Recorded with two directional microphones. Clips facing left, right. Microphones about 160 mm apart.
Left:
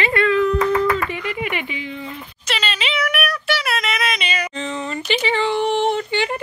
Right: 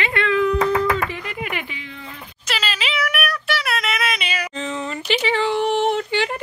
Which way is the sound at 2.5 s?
Centre (ahead or behind).